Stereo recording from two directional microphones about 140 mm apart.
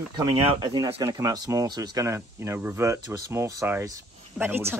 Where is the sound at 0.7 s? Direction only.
25° right (ahead or behind).